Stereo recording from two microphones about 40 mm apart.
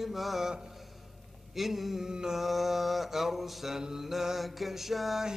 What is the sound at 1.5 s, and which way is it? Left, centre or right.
Mantra, centre.